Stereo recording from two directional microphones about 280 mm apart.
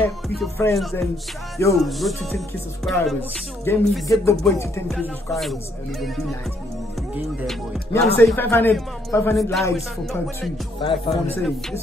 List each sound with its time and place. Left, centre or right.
0.0 s a man's voice: centre
1.9 s music: centre
7.4 s music: centre
8.2 s a man's voice: centre
10.8 s music: centre